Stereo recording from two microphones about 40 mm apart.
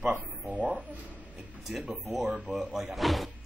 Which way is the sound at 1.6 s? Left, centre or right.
Centre.